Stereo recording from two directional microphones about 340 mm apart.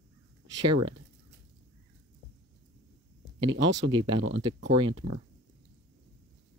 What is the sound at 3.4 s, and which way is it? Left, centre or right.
Speech, centre.